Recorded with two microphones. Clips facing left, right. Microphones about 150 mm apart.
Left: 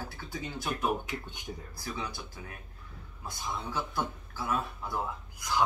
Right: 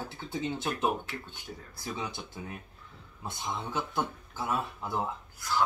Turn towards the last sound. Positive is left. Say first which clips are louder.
# even
turn(degrees=15)  # may be behind; listen again after turning